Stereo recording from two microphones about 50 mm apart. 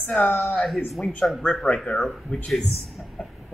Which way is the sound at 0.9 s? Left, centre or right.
Centre.